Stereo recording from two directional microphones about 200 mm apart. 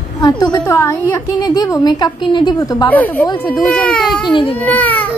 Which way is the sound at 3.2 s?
20° left (ahead or behind).